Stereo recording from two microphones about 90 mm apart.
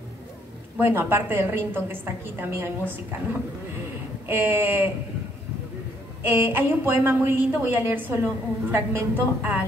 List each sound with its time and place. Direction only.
0.7 s a woman's voice: 25° right (ahead or behind)
4.3 s a woman's voice: 25° right (ahead or behind)
6.2 s a woman's voice: 25° right (ahead or behind)